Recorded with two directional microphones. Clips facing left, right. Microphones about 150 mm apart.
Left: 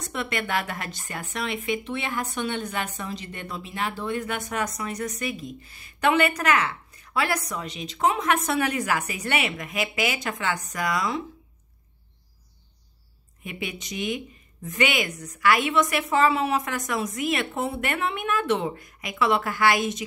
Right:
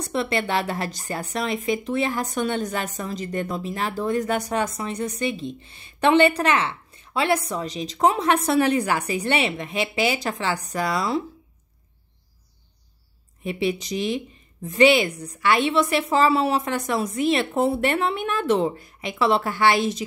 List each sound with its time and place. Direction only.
0.0 s a woman's voice: 30° right (ahead or behind)
13.4 s a woman's voice: 30° right (ahead or behind)